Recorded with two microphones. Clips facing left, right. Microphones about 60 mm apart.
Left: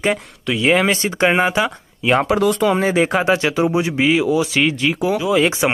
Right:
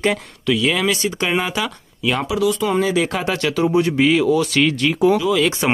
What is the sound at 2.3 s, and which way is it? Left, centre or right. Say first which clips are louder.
Speech: left 3 dB; left.